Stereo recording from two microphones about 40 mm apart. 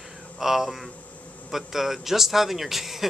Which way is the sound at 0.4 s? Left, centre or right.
Centre.